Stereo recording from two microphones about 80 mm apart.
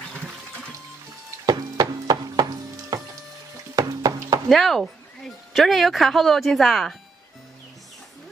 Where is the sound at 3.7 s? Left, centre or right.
Right.